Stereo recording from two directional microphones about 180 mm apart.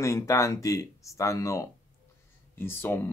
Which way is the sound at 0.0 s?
15° left (ahead or behind).